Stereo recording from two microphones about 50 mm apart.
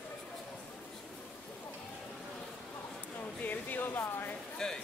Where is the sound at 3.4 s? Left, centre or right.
Left.